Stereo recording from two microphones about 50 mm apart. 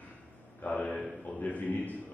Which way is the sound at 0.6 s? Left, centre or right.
Left.